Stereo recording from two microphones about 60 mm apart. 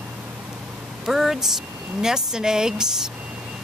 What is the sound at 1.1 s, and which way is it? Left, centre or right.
Speech, centre.